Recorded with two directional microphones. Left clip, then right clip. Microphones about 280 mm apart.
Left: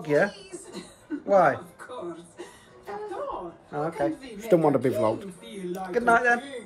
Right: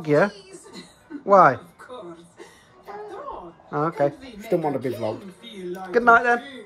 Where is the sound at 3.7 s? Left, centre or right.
Right.